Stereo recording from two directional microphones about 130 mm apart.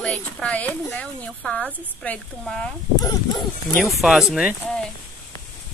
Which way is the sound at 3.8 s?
Centre (ahead or behind).